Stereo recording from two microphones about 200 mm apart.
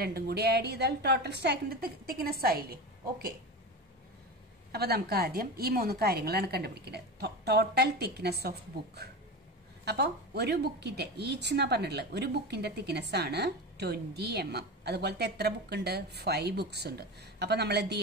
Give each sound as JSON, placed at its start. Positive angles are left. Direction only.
{"t": 0.0, "sound": "a woman's voice", "side_deg": -50}
{"t": 4.7, "sound": "a woman's voice", "side_deg": -50}